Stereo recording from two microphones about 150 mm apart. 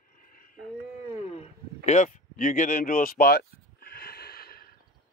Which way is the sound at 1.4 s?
55° left (ahead or behind).